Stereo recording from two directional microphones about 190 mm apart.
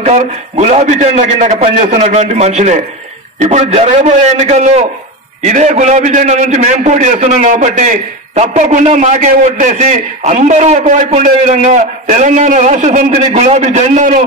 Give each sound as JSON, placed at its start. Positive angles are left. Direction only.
{"t": 0.0, "sound": "a man's voice", "side_deg": -35}